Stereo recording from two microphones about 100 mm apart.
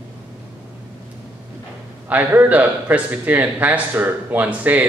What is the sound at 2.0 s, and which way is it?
A man's voice, 20° right (ahead or behind).